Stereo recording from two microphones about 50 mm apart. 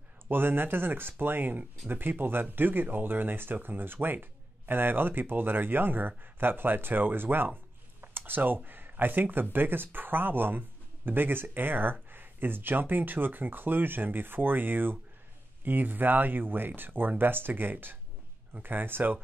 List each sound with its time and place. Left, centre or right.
0.3 s speech: right